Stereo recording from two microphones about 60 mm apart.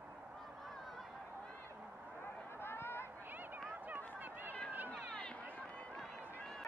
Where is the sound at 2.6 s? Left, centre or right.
Left.